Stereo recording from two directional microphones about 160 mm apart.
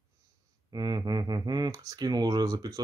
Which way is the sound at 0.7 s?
25° right (ahead or behind).